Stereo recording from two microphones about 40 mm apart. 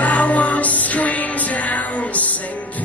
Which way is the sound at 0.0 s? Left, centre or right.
Left.